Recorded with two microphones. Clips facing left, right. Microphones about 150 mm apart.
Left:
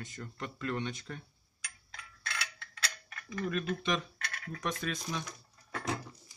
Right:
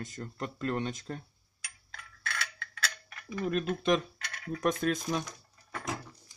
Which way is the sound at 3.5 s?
45° right (ahead or behind).